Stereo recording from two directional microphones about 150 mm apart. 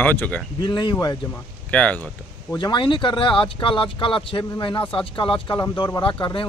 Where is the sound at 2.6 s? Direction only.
35° left (ahead or behind).